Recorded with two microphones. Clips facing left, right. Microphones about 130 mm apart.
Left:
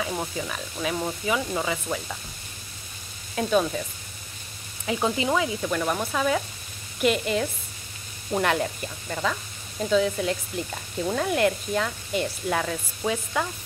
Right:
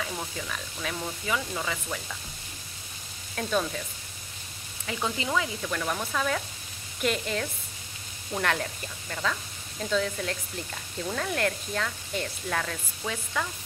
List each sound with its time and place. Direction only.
0.0 s speech: 20° left (ahead or behind)
3.3 s speech: 15° left (ahead or behind)
4.8 s speech: 20° left (ahead or behind)